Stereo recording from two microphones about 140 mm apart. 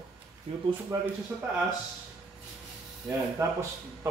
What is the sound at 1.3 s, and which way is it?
Speech, 10° right (ahead or behind).